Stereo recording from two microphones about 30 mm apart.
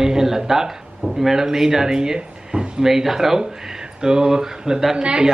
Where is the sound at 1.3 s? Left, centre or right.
Centre.